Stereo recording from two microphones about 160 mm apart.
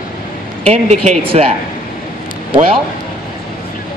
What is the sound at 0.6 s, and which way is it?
Speech, 40° right (ahead or behind).